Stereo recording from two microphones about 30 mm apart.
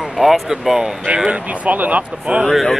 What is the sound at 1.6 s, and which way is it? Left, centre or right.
Speech, right.